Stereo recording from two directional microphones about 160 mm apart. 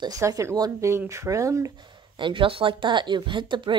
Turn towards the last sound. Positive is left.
turn(degrees=-30)  # may be behind; listen again after turning